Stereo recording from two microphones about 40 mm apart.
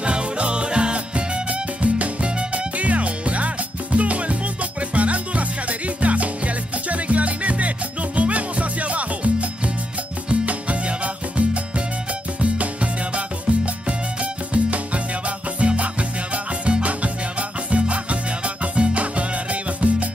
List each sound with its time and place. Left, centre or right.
0.0 s music: right
10.4 s salsa music: right
13.5 s music: right
13.8 s music: right